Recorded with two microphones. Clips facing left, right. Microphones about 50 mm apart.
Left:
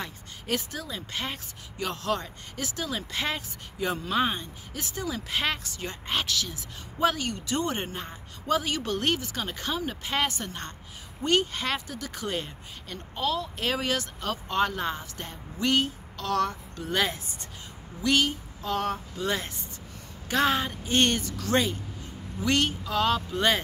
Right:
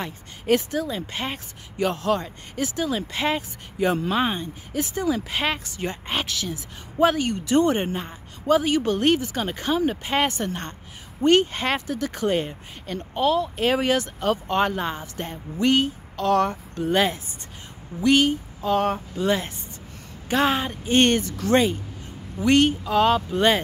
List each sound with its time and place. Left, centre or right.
0.0 s a woman's voice: right; by 3.4 s centre
3.8 s a woman's voice: right
4.1 s a woman's voice: centre
16.2 s a woman's voice: right